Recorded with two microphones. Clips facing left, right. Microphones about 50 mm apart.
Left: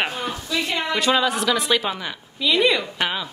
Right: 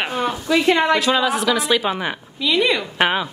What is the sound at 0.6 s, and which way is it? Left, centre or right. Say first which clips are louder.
Speech: right 9 dB; right.